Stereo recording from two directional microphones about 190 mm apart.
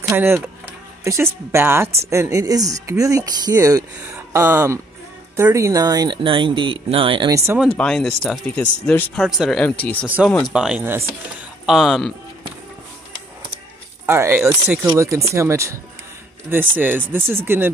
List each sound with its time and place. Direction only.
0.0 s speech: 15° right (ahead or behind)
7.5 s speech: 5° left (ahead or behind)
10.0 s speech: 10° right (ahead or behind)
11.6 s speech: centre (ahead or behind)
14.0 s speech: 15° right (ahead or behind)